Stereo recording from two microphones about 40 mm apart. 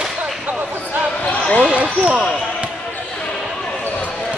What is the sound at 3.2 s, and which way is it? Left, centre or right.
Basketball bounce, left.